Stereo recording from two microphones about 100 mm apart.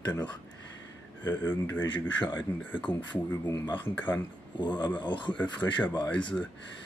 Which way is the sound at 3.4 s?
35° left (ahead or behind).